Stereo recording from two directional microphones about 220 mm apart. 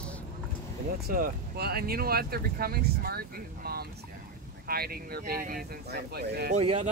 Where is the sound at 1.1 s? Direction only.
45° right (ahead or behind).